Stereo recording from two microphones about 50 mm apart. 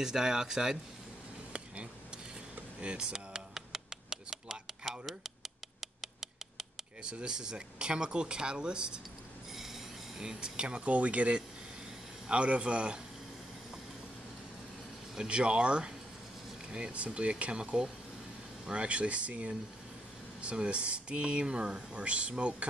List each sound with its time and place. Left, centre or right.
0.0 s speech: centre
2.8 s a sound: centre
7.0 s speech: centre
10.1 s speech: centre
15.1 s speech: centre